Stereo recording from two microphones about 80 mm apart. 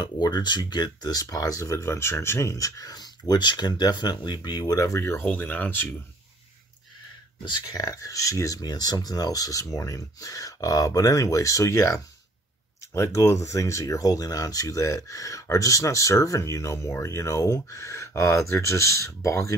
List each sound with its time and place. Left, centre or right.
0.0 s speech: left
4.5 s speech: left
5.2 s speech: centre
7.4 s speech: left